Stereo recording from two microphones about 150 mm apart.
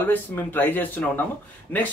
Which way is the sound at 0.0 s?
10° left (ahead or behind).